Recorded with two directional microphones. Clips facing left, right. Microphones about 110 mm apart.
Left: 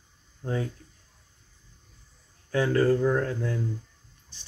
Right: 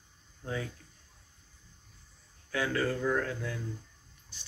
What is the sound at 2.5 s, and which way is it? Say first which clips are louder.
Speech: left 8 dB; 35° left (ahead or behind).